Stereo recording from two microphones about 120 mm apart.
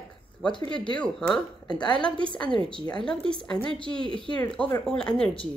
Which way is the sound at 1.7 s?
35° left (ahead or behind).